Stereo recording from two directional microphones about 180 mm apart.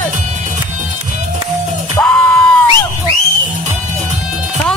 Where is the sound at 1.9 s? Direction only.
5° left (ahead or behind).